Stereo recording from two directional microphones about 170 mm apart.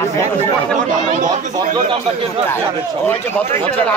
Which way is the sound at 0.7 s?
45° right (ahead or behind).